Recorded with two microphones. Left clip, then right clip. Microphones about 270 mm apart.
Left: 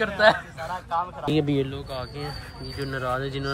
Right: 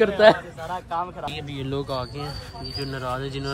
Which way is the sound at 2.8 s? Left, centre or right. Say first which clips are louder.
Left 2 dB; centre.